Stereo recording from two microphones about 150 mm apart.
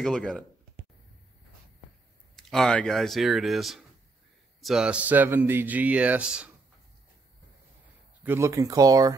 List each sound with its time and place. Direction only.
0.0 s speech: centre (ahead or behind)
2.3 s speech: 5° left (ahead or behind)
8.2 s speech: 15° right (ahead or behind)